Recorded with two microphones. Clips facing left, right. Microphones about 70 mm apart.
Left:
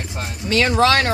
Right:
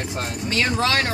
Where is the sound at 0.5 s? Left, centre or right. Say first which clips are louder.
Left 6 dB; left.